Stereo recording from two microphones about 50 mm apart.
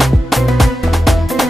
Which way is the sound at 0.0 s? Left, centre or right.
Centre.